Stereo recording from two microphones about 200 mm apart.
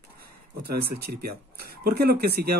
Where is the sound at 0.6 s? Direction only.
50° right (ahead or behind).